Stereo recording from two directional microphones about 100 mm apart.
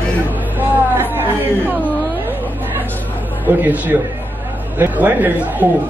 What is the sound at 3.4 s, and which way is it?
Speech, 20° right (ahead or behind).